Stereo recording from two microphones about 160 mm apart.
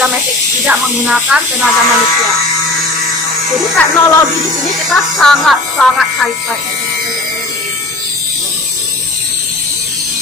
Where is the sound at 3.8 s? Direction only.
10° left (ahead or behind).